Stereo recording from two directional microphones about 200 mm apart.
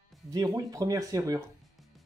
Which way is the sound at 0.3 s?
15° right (ahead or behind).